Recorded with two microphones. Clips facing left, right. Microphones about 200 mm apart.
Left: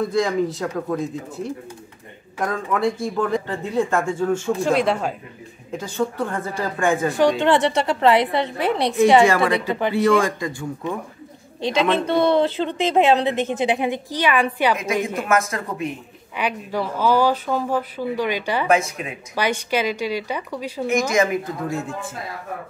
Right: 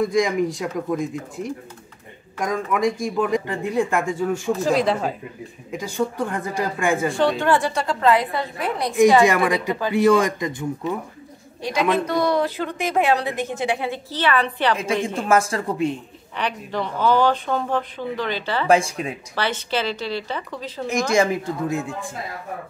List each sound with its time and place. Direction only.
0.0 s speech: 15° right (ahead or behind)
4.6 s speech: centre (ahead or behind)
5.7 s speech: 10° right (ahead or behind)
7.2 s speech: 10° left (ahead or behind)
7.4 s a woman's voice: 20° left (ahead or behind)
9.3 s speech: 15° right (ahead or behind)
11.6 s a woman's voice: 25° left (ahead or behind)
15.1 s speech: 30° right (ahead or behind)
16.3 s speech: 10° left (ahead or behind)
18.7 s speech: 30° right (ahead or behind)
19.3 s speech: 15° left (ahead or behind)
21.1 s speech: 30° right (ahead or behind)